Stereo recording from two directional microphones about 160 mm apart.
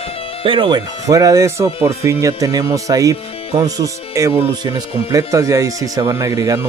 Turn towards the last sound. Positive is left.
turn(degrees=-20)  # may be behind; listen again after turning